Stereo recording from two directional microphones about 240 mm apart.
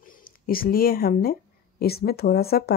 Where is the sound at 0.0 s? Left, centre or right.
Left.